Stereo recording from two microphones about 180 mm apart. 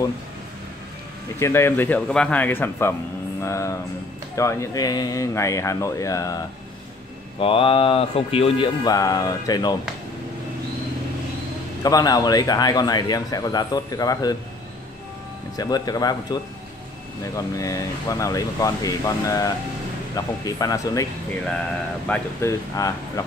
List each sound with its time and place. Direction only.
1.4 s speech: 15° left (ahead or behind)
7.3 s speech: 30° left (ahead or behind)
11.8 s a man's voice: 20° left (ahead or behind)
15.5 s a man's voice: 20° left (ahead or behind)
17.6 s a man's voice: 20° left (ahead or behind)
22.0 s speech: 5° left (ahead or behind)
22.8 s a man's voice: 20° left (ahead or behind)